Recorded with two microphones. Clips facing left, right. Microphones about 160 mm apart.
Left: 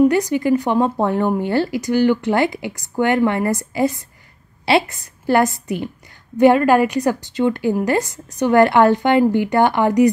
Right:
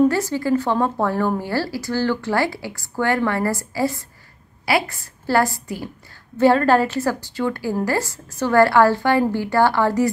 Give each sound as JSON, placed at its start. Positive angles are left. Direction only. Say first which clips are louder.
{"t": 0.0, "sound": "speech", "louder": "left 3 dB", "side_deg": 15}